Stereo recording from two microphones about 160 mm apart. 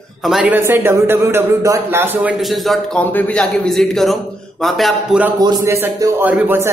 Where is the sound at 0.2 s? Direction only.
5° right (ahead or behind).